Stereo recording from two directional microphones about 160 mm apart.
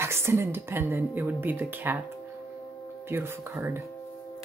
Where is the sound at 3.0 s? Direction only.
15° right (ahead or behind).